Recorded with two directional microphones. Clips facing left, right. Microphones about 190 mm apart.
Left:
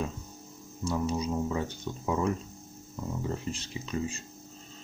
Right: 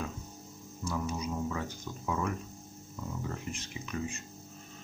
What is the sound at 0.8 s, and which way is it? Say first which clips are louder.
Speech: left 5 dB; 30° left (ahead or behind).